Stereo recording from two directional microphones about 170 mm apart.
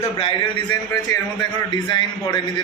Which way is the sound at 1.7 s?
25° left (ahead or behind).